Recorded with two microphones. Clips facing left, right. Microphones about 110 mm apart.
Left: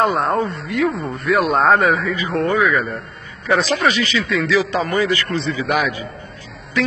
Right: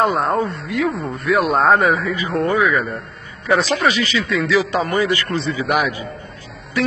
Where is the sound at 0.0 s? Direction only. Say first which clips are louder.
Even; centre (ahead or behind).